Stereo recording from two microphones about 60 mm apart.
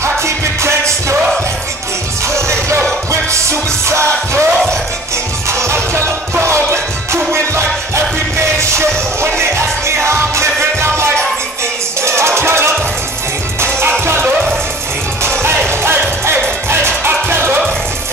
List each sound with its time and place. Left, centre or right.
0.0 s music: right
2.2 s music: right
3.9 s music: right
5.5 s music: right
15.8 s music: right